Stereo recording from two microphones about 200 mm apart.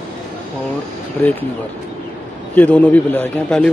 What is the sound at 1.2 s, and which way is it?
Speech, 10° left (ahead or behind).